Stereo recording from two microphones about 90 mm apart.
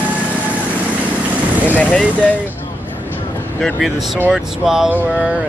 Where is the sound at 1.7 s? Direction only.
15° left (ahead or behind).